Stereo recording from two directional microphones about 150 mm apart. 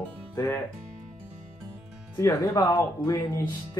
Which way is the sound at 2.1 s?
20° left (ahead or behind).